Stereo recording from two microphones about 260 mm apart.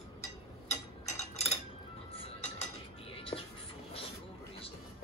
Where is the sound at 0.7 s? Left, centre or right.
Left.